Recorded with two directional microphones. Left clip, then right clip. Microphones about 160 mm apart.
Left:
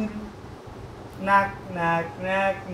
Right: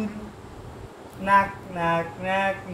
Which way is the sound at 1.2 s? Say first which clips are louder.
Right 1 dB; centre (ahead or behind).